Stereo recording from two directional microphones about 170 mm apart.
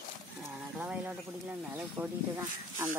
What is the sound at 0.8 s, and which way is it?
Speech, 10° right (ahead or behind).